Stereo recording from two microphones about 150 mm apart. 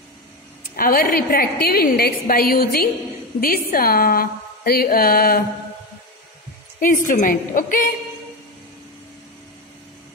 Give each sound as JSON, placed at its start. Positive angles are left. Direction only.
{"t": 0.7, "sound": "a woman's voice", "side_deg": 75}
{"t": 7.1, "sound": "a woman's voice", "side_deg": 60}